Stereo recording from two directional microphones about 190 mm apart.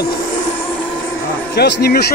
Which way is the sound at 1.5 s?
60° left (ahead or behind).